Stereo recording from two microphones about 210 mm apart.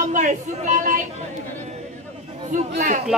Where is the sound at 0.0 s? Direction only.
35° right (ahead or behind).